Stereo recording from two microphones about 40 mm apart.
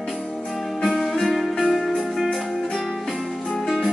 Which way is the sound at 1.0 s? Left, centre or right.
Centre.